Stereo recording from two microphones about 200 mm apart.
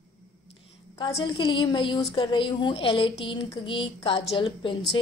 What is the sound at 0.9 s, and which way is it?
A woman's voice, 25° left (ahead or behind).